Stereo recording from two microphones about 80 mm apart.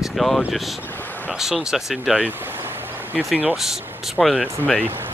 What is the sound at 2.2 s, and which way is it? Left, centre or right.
Vehicle, right.